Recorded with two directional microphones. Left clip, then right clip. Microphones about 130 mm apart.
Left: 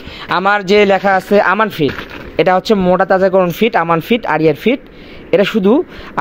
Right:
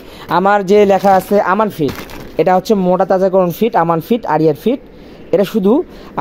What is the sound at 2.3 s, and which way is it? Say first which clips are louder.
Speech: even; 20° right (ahead or behind).